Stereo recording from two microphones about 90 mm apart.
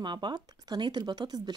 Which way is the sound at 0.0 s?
55° right (ahead or behind).